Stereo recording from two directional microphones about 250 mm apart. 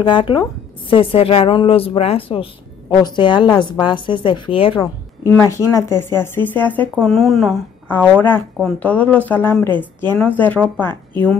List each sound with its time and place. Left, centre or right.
0.0 s a woman's voice: centre
5.3 s speech: centre